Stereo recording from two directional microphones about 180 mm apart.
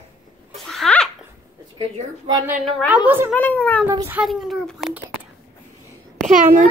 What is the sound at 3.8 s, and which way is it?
Speech, 15° right (ahead or behind).